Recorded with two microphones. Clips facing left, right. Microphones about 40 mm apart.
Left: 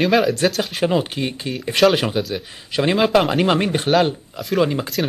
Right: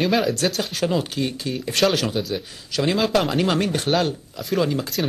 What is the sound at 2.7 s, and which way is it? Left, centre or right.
Speech, left.